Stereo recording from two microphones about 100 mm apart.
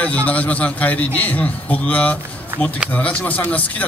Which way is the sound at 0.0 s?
15° left (ahead or behind).